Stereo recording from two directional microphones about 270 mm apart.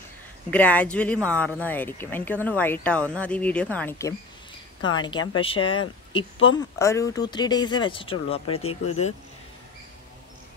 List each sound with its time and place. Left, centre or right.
0.5 s speech: centre
5.4 s speech: centre